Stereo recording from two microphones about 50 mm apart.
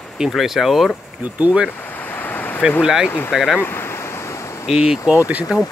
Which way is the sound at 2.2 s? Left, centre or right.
Left.